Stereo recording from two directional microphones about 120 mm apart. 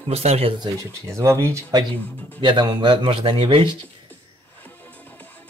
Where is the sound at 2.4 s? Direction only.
35° right (ahead or behind).